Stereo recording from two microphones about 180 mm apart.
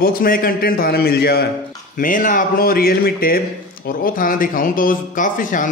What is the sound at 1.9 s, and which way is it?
A man's voice, 50° left (ahead or behind).